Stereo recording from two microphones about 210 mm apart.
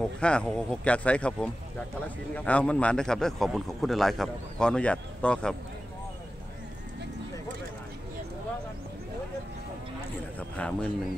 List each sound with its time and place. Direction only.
0.2 s a man's voice: 5° left (ahead or behind)
10.5 s a man's voice: 5° left (ahead or behind)